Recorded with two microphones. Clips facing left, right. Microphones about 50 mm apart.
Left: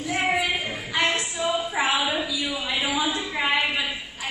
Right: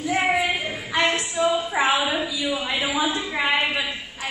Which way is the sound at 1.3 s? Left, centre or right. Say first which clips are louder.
Right 4 dB; right.